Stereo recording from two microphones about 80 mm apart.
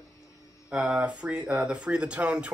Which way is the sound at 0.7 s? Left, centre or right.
Centre.